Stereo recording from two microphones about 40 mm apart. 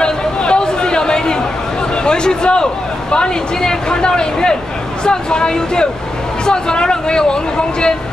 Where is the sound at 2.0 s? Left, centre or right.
Left.